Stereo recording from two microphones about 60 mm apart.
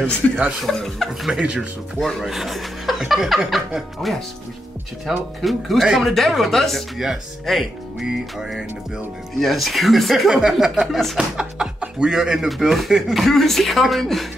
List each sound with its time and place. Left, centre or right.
0.2 s speech: left
0.7 s speech: centre
1.4 s speech: centre
2.0 s speech: centre
11.1 s speech: centre